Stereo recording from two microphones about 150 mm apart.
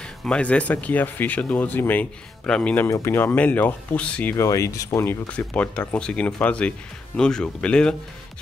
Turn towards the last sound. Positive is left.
turn(degrees=5)  # may be behind; listen again after turning